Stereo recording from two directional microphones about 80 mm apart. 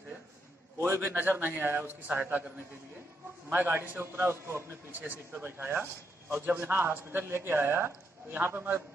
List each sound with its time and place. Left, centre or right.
0.7 s a man's voice: right
3.4 s a man's voice: right